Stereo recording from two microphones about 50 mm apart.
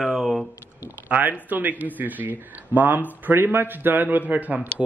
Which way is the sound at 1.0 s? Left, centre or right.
Right.